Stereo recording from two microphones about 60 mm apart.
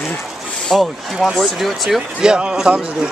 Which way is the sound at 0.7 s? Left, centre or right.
Centre.